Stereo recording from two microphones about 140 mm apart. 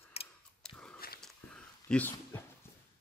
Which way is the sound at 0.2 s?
45° left (ahead or behind).